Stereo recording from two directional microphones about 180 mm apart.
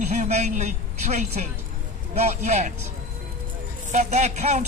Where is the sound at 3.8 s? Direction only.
40° right (ahead or behind).